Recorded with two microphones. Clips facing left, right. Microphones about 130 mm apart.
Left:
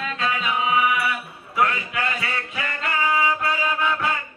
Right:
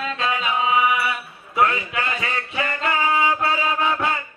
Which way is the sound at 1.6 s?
25° right (ahead or behind).